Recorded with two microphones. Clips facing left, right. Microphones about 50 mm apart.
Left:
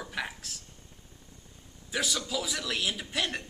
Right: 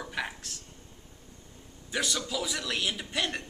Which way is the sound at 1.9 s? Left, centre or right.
Centre.